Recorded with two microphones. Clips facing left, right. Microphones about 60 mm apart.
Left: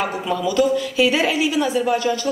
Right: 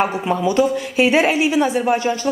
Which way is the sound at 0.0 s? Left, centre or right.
Right.